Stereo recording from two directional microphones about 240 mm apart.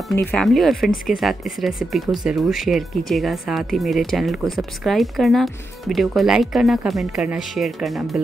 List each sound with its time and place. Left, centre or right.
0.3 s speech: centre